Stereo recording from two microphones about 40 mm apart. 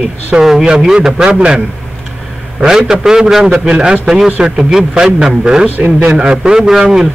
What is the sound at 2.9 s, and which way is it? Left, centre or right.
Speech, centre.